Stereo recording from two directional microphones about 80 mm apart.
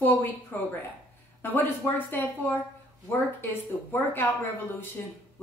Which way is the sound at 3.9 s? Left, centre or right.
Left.